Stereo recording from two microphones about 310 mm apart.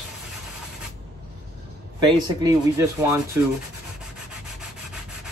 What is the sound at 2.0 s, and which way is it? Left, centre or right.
Speech, centre.